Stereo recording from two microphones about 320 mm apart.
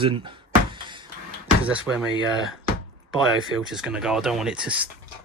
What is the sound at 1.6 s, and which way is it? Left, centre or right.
Speech, centre.